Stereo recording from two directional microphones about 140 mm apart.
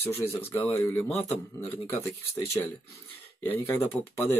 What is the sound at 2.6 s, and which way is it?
Speech, 15° left (ahead or behind).